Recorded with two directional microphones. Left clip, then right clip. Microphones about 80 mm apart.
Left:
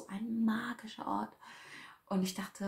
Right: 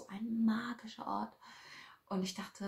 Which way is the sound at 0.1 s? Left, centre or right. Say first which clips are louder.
Left 1 dB; centre.